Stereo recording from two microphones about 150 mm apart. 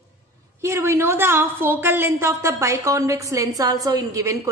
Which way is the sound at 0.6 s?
20° right (ahead or behind).